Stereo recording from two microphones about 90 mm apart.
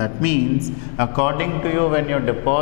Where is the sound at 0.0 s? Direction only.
15° left (ahead or behind).